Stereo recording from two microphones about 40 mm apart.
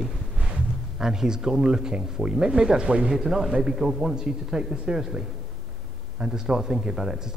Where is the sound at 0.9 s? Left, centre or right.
Centre.